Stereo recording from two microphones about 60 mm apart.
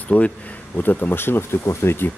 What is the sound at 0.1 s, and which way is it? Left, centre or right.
Speech, left.